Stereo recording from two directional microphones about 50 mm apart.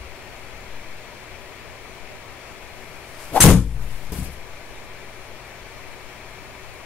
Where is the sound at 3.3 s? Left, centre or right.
Left.